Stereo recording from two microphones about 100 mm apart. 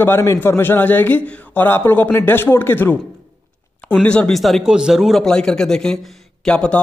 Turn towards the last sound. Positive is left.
turn(degrees=10)  # may be behind; listen again after turning